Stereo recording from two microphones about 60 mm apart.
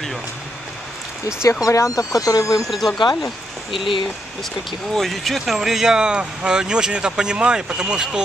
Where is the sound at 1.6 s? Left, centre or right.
Left.